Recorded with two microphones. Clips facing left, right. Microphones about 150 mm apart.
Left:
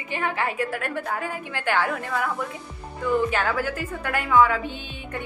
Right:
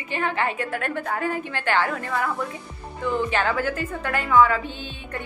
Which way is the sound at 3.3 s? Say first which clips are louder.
Right 1 dB; 5° left (ahead or behind).